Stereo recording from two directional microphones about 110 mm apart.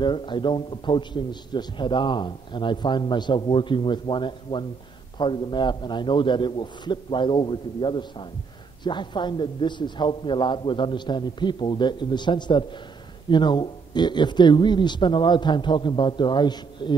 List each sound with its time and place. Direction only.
0.0 s a man's voice: 45° left (ahead or behind)